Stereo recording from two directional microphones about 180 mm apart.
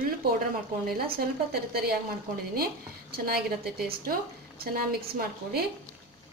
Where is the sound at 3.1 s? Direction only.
55° right (ahead or behind).